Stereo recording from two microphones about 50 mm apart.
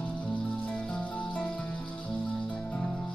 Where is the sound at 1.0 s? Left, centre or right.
Left.